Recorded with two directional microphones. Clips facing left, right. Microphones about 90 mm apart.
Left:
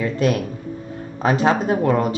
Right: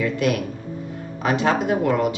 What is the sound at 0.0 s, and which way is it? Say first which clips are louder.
Speech: left 2 dB; 35° left (ahead or behind).